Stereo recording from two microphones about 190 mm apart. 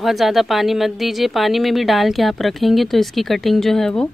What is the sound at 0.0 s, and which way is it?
Speech, centre (ahead or behind).